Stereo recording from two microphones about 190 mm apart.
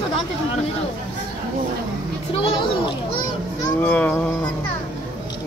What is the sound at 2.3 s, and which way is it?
Speech, 30° left (ahead or behind).